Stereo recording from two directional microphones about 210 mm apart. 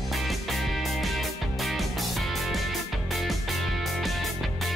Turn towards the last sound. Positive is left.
turn(degrees=0)  # may be behind; listen again after turning